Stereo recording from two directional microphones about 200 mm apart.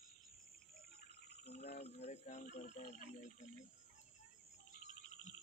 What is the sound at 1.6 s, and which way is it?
Speech, 35° left (ahead or behind).